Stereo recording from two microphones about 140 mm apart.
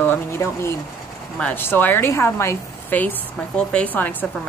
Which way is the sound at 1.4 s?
15° left (ahead or behind).